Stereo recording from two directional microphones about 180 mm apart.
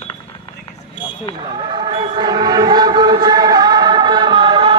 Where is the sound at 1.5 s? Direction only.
30° right (ahead or behind).